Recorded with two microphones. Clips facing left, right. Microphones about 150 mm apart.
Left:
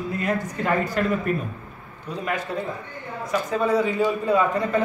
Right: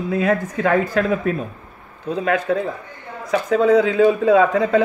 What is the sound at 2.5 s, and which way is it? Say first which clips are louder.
A man's voice: right 7 dB; 90° right.